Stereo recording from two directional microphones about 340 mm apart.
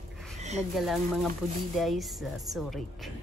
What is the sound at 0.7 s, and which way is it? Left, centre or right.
A woman's voice, centre.